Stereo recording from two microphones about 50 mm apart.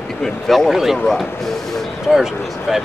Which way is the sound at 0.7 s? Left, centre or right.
Centre.